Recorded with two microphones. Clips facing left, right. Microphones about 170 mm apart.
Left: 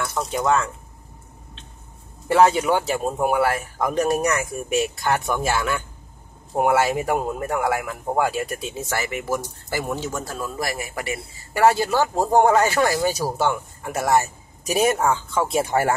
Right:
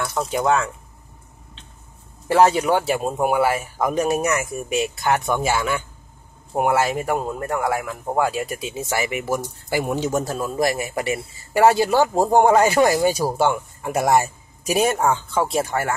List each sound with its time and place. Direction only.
0.0 s speech: centre (ahead or behind)
2.8 s speech: 10° right (ahead or behind)
8.9 s speech: 15° right (ahead or behind)
15.0 s speech: centre (ahead or behind)
15.6 s speech: 30° left (ahead or behind)